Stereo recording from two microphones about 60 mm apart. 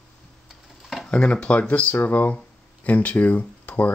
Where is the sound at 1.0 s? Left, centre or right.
Centre.